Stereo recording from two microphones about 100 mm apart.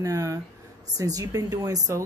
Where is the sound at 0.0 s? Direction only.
35° right (ahead or behind).